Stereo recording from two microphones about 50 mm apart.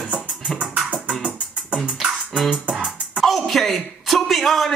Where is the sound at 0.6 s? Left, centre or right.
Right.